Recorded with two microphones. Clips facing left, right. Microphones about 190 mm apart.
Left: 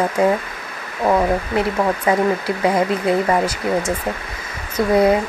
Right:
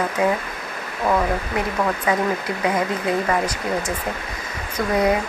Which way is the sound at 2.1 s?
35° left (ahead or behind).